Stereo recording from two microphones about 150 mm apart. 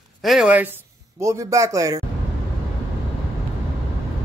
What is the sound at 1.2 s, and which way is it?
Speech, 20° right (ahead or behind).